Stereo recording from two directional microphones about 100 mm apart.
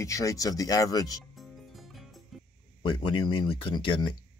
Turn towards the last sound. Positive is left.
turn(degrees=55)  # may be behind; listen again after turning